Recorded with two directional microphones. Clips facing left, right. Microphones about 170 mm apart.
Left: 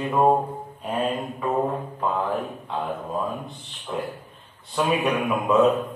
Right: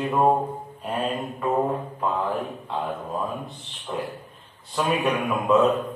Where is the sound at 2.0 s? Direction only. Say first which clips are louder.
Left 2 dB; centre (ahead or behind).